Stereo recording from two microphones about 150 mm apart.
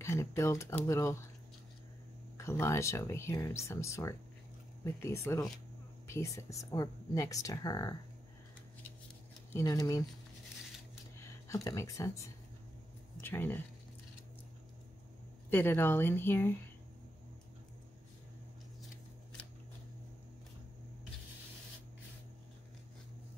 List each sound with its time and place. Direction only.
0.0 s speech: 15° left (ahead or behind)
2.3 s speech: 15° left (ahead or behind)
9.5 s speech: 20° left (ahead or behind)
11.1 s speech: 20° left (ahead or behind)
15.5 s speech: 15° left (ahead or behind)